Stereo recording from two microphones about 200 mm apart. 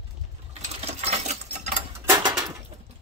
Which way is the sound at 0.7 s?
30° right (ahead or behind).